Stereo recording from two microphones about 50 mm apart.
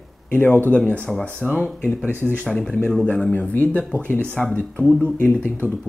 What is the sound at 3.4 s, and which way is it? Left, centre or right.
Speech, left.